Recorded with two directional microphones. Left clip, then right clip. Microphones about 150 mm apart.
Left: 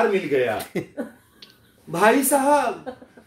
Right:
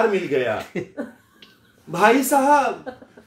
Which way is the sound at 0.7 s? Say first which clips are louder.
Even; 35° left (ahead or behind).